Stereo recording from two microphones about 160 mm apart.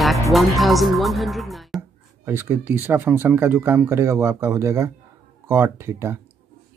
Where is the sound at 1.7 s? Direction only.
15° right (ahead or behind).